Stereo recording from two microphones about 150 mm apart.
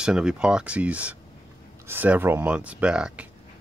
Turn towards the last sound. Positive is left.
turn(degrees=-5)  # may be behind; listen again after turning